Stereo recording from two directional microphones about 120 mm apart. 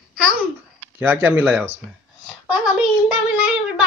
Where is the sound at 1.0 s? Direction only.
15° right (ahead or behind).